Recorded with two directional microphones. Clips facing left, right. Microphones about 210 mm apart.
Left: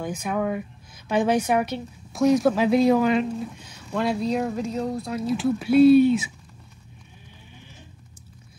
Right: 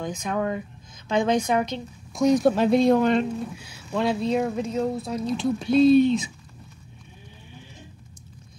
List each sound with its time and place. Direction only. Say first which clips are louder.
0.0 s a woman's voice: left 1 dB; 10° left (ahead or behind)
3.5 s a woman's voice: even; 10° right (ahead or behind); by 6.3 s 10° left (ahead or behind)